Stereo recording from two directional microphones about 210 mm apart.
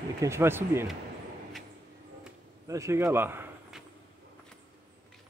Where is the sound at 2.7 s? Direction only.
15° right (ahead or behind).